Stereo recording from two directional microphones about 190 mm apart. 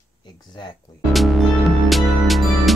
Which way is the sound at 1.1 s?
Centre (ahead or behind).